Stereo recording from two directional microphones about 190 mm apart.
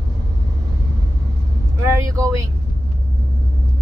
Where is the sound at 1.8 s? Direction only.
15° right (ahead or behind).